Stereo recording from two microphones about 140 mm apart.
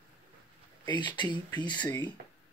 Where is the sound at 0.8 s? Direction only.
35° left (ahead or behind).